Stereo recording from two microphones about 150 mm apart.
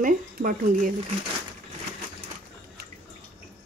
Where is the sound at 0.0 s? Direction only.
70° right (ahead or behind).